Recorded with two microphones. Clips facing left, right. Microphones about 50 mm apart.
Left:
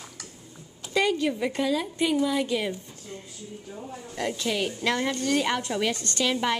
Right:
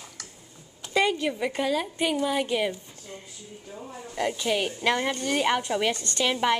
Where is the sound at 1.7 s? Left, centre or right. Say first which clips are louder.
Left 1 dB; centre.